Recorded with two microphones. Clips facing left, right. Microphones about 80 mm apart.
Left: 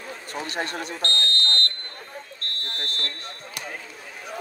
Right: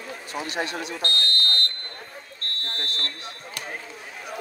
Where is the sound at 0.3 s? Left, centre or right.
Left.